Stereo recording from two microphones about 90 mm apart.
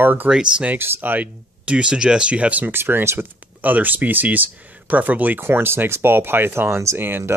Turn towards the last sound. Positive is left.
turn(degrees=-25)  # may be behind; listen again after turning